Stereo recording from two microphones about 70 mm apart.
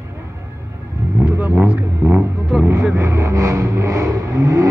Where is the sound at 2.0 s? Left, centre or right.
Right.